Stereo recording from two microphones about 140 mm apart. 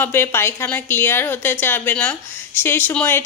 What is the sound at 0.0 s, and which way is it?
A woman's voice, 15° left (ahead or behind).